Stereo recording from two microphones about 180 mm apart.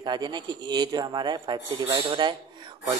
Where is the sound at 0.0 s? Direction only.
25° right (ahead or behind).